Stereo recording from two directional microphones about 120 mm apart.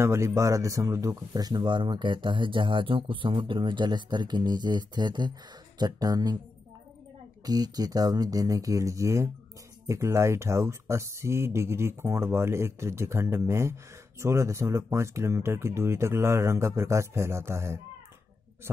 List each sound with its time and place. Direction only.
0.0 s speech: 25° right (ahead or behind)
7.4 s speech: 30° right (ahead or behind)